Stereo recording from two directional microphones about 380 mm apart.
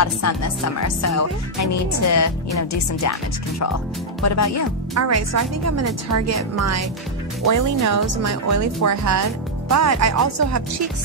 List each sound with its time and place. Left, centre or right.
0.0 s music: left
4.9 s a woman's voice: right